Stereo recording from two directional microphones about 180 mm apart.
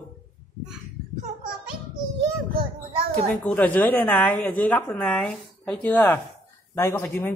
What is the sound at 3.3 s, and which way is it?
A woman's voice, 10° left (ahead or behind).